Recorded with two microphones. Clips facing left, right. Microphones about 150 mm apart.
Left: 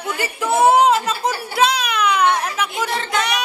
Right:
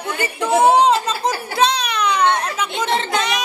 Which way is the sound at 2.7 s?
20° right (ahead or behind).